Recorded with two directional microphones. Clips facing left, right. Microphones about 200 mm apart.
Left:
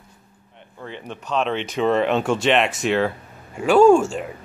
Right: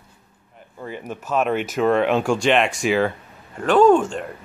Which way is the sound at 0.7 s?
10° right (ahead or behind).